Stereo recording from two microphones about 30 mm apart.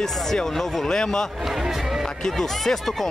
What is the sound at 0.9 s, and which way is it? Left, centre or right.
Speech, left.